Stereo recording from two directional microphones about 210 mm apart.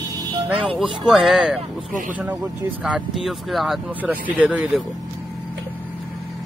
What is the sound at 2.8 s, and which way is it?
Speech, centre (ahead or behind).